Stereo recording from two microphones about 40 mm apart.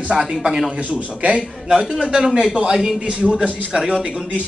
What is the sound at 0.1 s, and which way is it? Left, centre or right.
Speech, centre.